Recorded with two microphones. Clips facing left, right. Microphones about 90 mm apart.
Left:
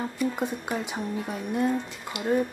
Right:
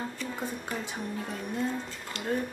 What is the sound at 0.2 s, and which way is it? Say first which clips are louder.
Speech: left 7 dB; 15° left (ahead or behind).